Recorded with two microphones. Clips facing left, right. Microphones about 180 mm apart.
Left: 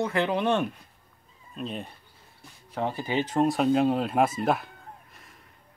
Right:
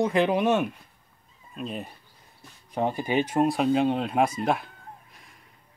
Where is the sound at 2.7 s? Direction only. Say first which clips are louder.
Right 3 dB; 15° right (ahead or behind).